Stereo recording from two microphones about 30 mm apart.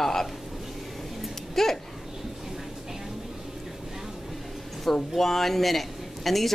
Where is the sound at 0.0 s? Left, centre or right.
Centre.